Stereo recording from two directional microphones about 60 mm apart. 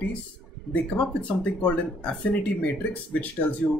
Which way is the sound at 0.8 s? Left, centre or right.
Centre.